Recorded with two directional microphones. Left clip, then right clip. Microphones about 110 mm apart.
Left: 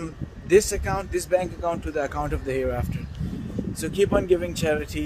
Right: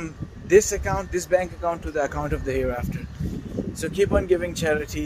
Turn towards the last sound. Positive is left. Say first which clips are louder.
# right 1 dB
turn(degrees=10)  # may be behind; listen again after turning